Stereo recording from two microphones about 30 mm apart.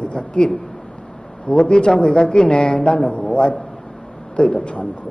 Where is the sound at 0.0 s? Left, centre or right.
Left.